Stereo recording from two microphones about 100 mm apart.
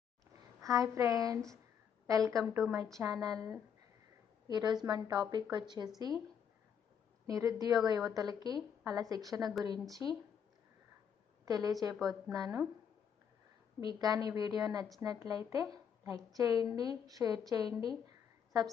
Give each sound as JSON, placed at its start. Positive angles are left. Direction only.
{"t": 0.6, "sound": "a woman's voice", "side_deg": -35}
{"t": 7.2, "sound": "a woman's voice", "side_deg": -35}
{"t": 11.4, "sound": "a woman's voice", "side_deg": -40}
{"t": 11.9, "sound": "a woman's voice", "side_deg": 0}
{"t": 12.3, "sound": "a woman's voice", "side_deg": -35}
{"t": 13.7, "sound": "a woman's voice", "side_deg": -35}